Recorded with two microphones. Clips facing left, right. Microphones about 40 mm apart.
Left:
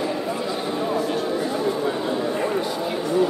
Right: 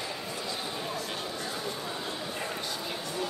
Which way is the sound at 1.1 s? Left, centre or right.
Centre.